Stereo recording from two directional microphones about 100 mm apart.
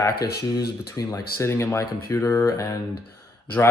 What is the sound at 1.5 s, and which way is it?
Speech, 25° left (ahead or behind).